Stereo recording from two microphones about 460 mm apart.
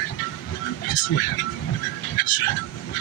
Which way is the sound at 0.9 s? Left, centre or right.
Left.